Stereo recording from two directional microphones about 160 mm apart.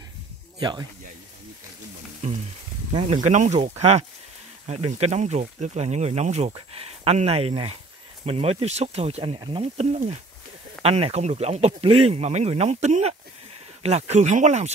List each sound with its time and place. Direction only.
0.6 s speech: 25° right (ahead or behind)
2.9 s speech: 40° right (ahead or behind)